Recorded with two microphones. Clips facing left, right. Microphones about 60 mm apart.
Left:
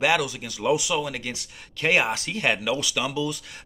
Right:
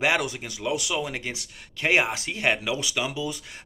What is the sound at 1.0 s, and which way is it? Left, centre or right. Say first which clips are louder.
Speech: even; right.